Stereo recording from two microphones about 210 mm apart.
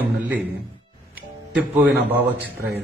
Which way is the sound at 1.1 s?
10° right (ahead or behind).